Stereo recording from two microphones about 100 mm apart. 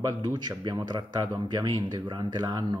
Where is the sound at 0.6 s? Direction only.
45° right (ahead or behind).